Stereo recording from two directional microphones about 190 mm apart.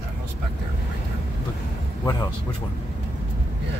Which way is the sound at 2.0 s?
20° left (ahead or behind).